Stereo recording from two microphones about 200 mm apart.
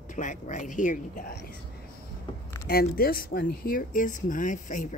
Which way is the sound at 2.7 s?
50° left (ahead or behind).